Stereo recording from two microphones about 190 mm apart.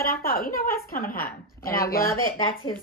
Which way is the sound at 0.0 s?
50° left (ahead or behind).